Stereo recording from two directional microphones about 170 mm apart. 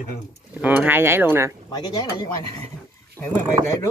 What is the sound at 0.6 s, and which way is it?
Speech, 10° right (ahead or behind).